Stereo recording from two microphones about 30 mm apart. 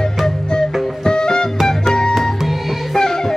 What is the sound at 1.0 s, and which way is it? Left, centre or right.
Music, left.